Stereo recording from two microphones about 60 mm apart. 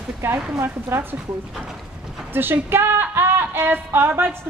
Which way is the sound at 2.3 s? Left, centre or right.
Right.